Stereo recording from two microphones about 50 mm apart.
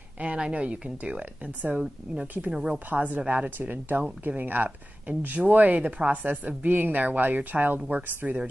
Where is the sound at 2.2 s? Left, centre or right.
Right.